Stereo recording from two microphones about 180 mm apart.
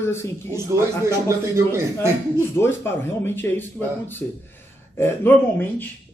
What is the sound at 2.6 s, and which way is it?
Speech, 10° left (ahead or behind).